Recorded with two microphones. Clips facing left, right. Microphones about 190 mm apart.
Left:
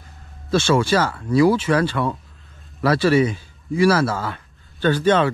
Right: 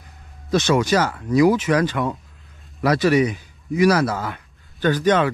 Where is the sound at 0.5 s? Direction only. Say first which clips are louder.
Even; 20° right (ahead or behind).